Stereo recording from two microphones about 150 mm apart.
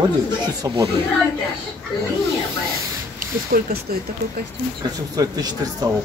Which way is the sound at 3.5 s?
80° right.